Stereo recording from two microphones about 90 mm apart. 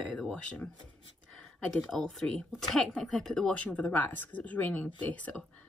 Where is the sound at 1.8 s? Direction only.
5° left (ahead or behind).